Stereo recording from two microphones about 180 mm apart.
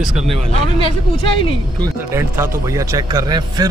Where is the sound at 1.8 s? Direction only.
15° right (ahead or behind).